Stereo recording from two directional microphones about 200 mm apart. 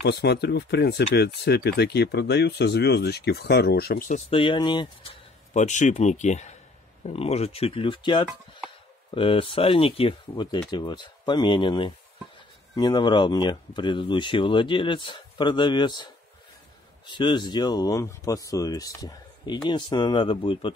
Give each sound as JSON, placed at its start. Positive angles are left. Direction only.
{"t": 0.0, "sound": "speech", "side_deg": 55}
{"t": 4.3, "sound": "speech", "side_deg": 25}
{"t": 5.5, "sound": "speech", "side_deg": 35}